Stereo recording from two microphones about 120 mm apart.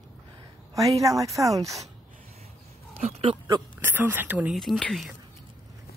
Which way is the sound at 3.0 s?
60° right (ahead or behind).